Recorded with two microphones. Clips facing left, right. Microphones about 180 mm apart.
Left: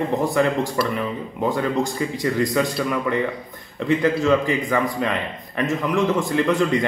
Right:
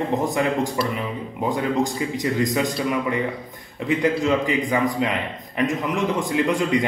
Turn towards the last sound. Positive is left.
turn(degrees=-15)  # may be behind; listen again after turning